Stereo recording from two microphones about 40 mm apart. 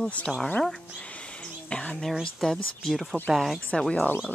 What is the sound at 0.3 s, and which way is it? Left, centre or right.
Speech, centre.